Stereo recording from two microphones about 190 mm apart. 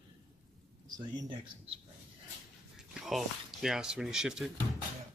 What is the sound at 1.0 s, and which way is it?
Speech, 25° right (ahead or behind).